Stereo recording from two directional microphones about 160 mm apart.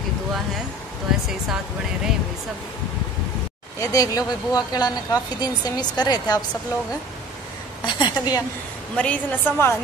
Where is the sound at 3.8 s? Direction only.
20° left (ahead or behind).